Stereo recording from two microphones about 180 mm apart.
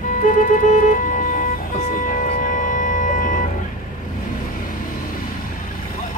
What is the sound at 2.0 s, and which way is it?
Music, 45° left (ahead or behind).